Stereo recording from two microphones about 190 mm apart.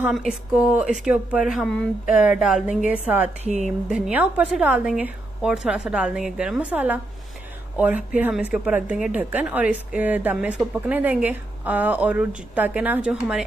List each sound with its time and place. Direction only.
0.0 s a woman's voice: centre (ahead or behind)
3.4 s speech: 35° right (ahead or behind)
3.9 s a woman's voice: 5° right (ahead or behind)